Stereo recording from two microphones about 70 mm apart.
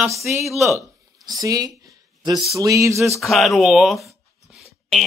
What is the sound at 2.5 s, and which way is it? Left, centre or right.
Speech, right.